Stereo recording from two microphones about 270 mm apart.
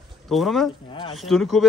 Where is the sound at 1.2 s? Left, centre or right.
Centre.